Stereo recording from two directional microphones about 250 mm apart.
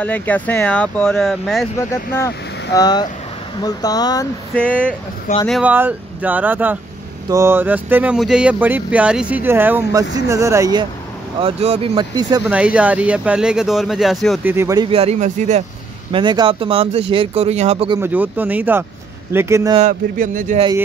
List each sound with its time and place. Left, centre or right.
0.0 s speech: centre
1.8 s speech: centre
5.5 s speech: centre
12.4 s speech: centre
14.9 s speech: right
19.8 s speech: right